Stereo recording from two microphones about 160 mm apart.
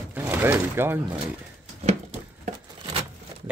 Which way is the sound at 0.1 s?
10° right (ahead or behind).